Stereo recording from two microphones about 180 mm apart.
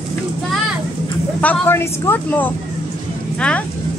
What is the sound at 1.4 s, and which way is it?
Speech, 10° left (ahead or behind).